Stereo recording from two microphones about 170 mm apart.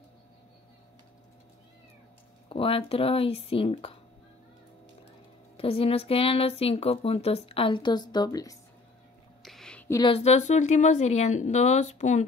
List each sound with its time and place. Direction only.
2.5 s speech: 35° left (ahead or behind)
5.6 s speech: 35° left (ahead or behind)
9.4 s a sound: centre (ahead or behind)
10.0 s a woman's voice: 35° left (ahead or behind)